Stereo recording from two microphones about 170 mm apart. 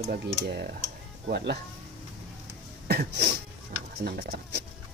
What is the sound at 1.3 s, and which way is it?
Cough, 75° right (ahead or behind).